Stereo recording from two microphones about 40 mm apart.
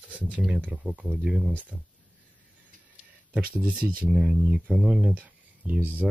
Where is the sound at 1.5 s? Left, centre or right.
Right.